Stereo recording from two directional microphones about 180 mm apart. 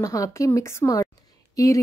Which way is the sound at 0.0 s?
15° left (ahead or behind).